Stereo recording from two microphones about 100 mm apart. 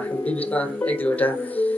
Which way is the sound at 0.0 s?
15° left (ahead or behind).